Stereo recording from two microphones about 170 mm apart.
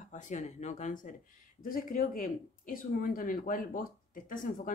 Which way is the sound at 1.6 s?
55° left (ahead or behind).